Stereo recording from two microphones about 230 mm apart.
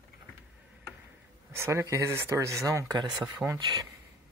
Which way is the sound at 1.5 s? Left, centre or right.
Centre.